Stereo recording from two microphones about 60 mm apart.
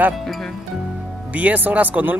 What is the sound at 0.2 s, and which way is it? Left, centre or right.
Music, centre.